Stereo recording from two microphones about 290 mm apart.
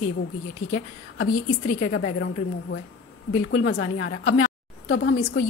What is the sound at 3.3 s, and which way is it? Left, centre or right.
A woman's voice, left.